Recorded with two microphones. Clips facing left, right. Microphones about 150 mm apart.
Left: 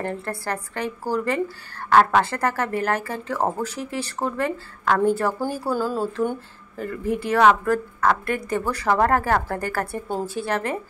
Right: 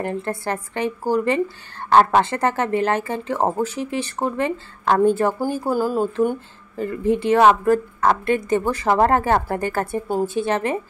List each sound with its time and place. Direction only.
0.0 s a woman's voice: 20° right (ahead or behind)